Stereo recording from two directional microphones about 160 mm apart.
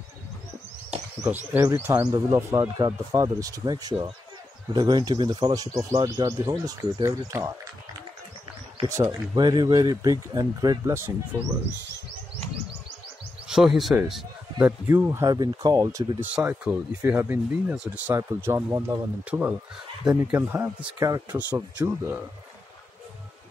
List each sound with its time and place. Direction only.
1.2 s speech: 10° right (ahead or behind)
8.8 s speech: 20° right (ahead or behind)
13.5 s a man's voice: centre (ahead or behind)
14.9 s speech: 15° right (ahead or behind)
16.3 s speech: 10° right (ahead or behind)